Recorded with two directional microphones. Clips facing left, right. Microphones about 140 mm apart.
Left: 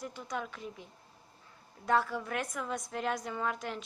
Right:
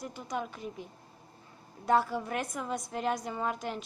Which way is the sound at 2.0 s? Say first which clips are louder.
Right 2 dB; 25° right (ahead or behind).